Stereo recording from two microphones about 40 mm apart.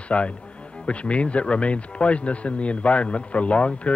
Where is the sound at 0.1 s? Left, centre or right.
Left.